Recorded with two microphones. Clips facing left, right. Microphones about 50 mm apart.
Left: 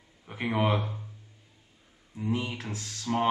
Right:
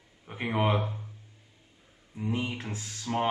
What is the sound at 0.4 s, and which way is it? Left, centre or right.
Speech, centre.